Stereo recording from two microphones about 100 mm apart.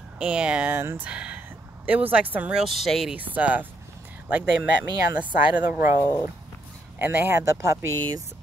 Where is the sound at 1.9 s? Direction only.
15° right (ahead or behind).